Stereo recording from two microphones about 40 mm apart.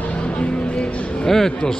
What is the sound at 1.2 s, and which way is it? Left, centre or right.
Speech, centre.